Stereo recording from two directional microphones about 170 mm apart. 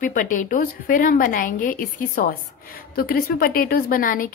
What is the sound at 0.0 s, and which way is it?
A woman's voice, 50° left (ahead or behind).